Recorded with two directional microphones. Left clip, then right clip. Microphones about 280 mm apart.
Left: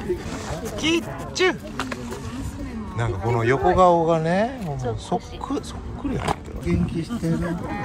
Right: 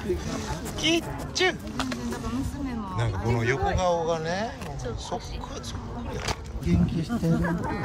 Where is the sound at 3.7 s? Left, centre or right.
Centre.